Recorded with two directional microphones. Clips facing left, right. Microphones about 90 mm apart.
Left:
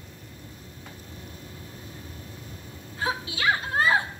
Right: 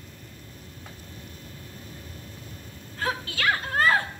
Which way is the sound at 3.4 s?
20° left (ahead or behind).